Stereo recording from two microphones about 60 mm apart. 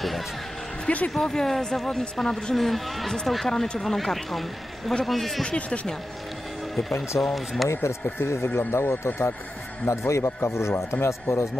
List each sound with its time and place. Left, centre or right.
0.8 s speech: left
1.1 s speech: centre
5.4 s speech: centre
7.2 s speech: centre
7.7 s speech: left
9.8 s speech: left